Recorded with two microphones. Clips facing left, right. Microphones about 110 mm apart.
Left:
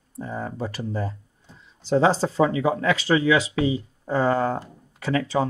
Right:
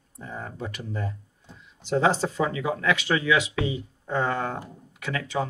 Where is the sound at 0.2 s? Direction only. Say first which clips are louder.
Left 5 dB; 35° left (ahead or behind).